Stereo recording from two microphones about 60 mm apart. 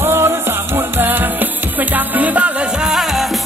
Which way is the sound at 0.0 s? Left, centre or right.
Right.